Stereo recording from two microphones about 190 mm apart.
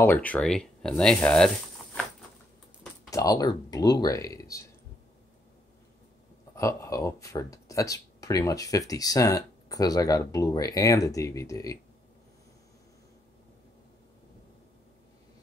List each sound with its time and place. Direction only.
0.0 s speech: 10° left (ahead or behind)
1.8 s patter: 5° left (ahead or behind)
3.1 s speech: 15° left (ahead or behind)
6.5 s speech: 15° left (ahead or behind)